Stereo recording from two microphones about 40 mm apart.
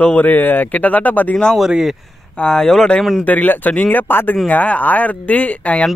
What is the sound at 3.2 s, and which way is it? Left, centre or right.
Speech, left.